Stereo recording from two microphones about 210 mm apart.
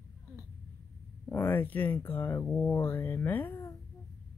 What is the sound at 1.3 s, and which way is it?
Speech, 10° left (ahead or behind).